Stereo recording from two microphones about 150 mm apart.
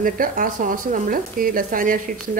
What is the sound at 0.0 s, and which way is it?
Speech, 65° right (ahead or behind).